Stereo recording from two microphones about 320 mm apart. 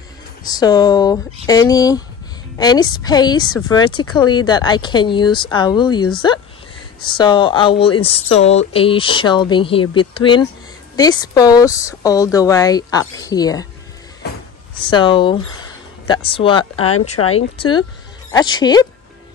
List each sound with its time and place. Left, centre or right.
0.4 s speech: centre
14.8 s speech: centre